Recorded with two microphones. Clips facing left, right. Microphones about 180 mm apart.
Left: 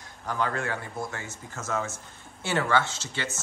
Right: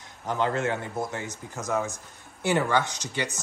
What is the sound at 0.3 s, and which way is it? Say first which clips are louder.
Speech: right 3 dB; 20° right (ahead or behind).